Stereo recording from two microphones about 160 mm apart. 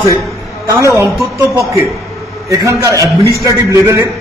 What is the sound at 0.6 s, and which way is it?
Speech, 20° right (ahead or behind).